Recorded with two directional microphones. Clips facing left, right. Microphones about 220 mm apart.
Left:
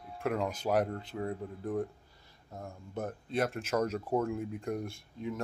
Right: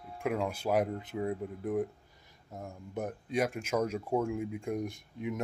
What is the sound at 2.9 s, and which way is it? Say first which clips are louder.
Speech: right 1 dB; 15° right (ahead or behind).